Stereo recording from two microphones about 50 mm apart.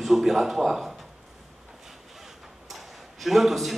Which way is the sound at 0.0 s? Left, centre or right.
Centre.